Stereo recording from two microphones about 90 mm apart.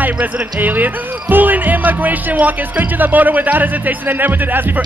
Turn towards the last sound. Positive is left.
turn(degrees=-20)  # may be behind; listen again after turning